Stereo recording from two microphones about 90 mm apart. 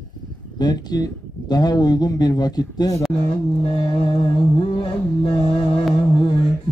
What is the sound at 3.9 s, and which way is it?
Music, 55° left (ahead or behind).